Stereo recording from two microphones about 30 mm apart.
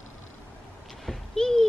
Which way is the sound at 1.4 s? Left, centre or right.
Centre.